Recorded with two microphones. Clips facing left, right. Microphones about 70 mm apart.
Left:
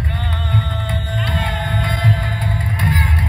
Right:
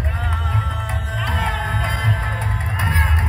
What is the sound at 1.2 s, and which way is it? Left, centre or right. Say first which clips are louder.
Music: right 1 dB; centre.